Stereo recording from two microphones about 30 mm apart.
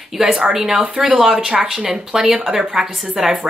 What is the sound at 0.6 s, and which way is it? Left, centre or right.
Speech, centre.